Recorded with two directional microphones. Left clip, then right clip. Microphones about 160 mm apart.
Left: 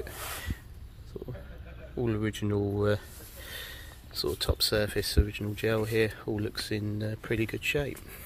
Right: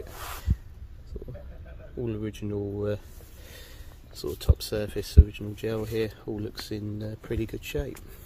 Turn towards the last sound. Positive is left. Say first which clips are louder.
# left 3 dB
turn(degrees=-25)  # may be behind; listen again after turning